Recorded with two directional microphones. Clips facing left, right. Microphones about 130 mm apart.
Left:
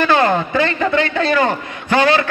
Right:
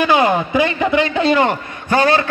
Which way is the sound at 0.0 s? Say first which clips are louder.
Even; 15° right (ahead or behind).